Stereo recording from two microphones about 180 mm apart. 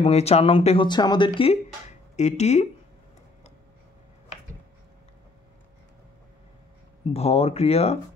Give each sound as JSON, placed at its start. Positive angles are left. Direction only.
{"t": 0.0, "sound": "speech", "side_deg": 35}
{"t": 7.1, "sound": "speech", "side_deg": 35}